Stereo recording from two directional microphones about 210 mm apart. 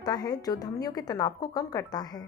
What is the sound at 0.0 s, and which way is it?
A woman's voice, 20° left (ahead or behind).